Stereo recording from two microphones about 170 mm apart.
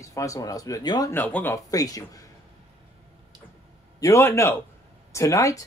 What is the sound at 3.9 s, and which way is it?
Speech, 20° left (ahead or behind).